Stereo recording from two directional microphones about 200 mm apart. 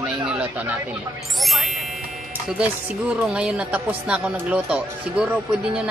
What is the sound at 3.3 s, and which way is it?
Speech, 5° right (ahead or behind).